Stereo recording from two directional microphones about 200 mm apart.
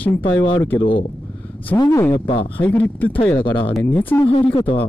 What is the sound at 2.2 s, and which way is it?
Speech, 25° left (ahead or behind).